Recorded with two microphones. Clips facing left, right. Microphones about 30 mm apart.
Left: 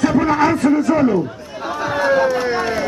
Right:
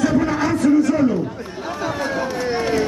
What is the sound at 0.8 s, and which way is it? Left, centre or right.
Chatter, left.